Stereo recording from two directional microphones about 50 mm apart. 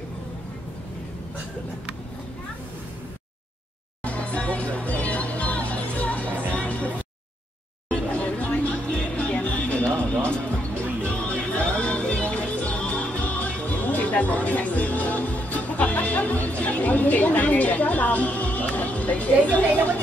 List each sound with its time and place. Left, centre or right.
4.0 s music: left
8.1 s a sound: left
9.1 s music: left